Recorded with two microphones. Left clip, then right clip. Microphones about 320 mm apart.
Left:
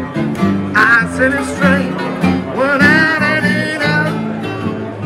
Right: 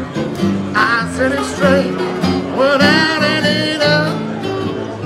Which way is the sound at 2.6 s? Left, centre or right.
Centre.